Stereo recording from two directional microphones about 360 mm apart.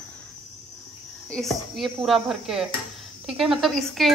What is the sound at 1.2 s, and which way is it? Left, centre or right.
Speech, centre.